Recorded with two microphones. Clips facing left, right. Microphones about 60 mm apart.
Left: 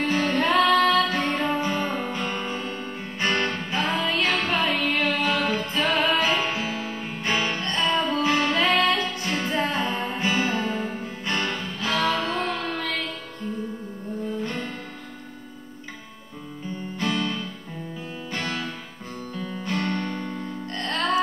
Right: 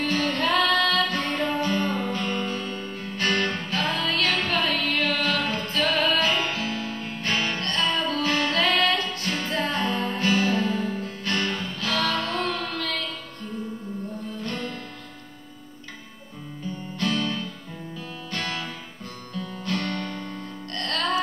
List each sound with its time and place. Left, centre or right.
0.0 s music: centre
4.3 s music: centre; by 10.8 s left
11.3 s music: centre
11.8 s music: left
17.1 s music: centre
18.3 s music: centre
19.8 s music: centre
20.1 s music: left